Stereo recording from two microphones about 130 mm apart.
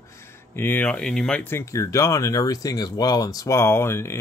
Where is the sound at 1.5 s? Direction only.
20° left (ahead or behind).